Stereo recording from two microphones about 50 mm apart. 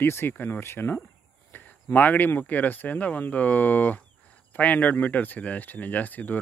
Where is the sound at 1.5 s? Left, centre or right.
Left.